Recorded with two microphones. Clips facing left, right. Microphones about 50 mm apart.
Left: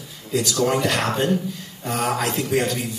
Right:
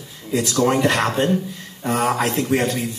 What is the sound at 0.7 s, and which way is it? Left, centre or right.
Speech, right.